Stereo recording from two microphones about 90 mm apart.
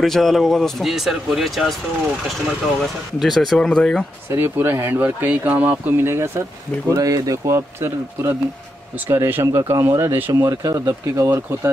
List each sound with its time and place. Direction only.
0.0 s speech: 5° left (ahead or behind)
3.2 s speech: centre (ahead or behind)
4.3 s speech: 25° right (ahead or behind)
6.9 s speech: 40° right (ahead or behind)